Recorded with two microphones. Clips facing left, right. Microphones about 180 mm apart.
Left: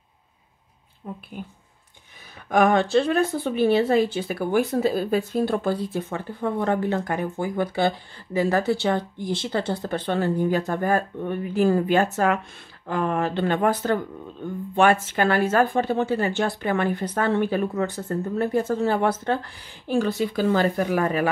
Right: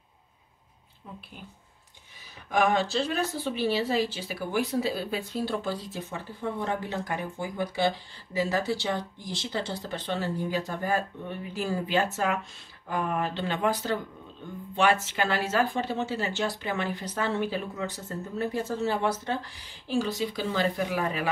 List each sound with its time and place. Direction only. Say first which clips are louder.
2.5 s a woman's voice: left 6 dB; 55° left (ahead or behind)
12.8 s speech: left 5 dB; 85° left
13.3 s speech: left 6 dB; 55° left (ahead or behind)